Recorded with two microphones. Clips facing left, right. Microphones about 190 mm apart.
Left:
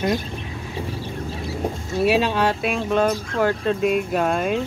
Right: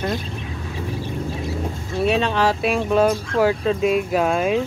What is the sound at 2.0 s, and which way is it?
Speech, 5° left (ahead or behind).